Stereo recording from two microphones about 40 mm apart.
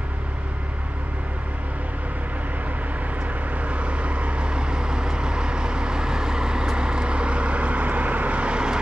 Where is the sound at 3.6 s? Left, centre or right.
Right.